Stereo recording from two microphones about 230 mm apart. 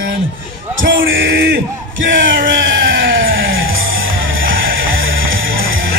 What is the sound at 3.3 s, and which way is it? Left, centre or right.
Music, right.